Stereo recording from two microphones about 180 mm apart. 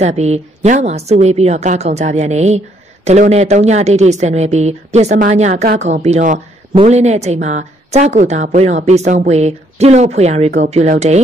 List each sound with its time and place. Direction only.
0.0 s a woman's voice: 40° right (ahead or behind)